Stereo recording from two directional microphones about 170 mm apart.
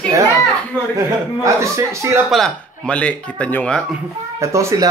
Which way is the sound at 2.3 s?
5° left (ahead or behind).